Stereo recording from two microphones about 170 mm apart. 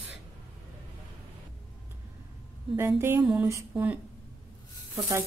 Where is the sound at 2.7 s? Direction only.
15° right (ahead or behind).